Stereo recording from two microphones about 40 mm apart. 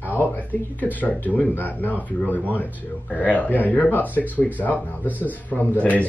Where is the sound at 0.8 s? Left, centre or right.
Left.